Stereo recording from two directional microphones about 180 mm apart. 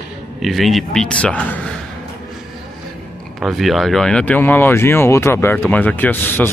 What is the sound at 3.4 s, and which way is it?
Speech, centre (ahead or behind).